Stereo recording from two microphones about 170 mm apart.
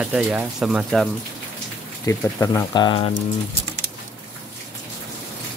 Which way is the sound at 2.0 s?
20° left (ahead or behind).